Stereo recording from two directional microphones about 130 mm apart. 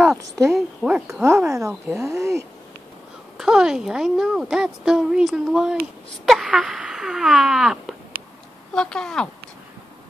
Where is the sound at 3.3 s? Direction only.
5° right (ahead or behind).